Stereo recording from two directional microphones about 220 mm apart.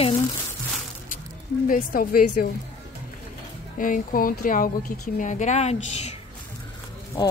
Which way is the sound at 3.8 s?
40° left (ahead or behind).